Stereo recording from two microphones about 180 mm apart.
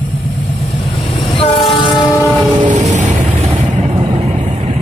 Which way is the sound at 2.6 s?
45° right (ahead or behind).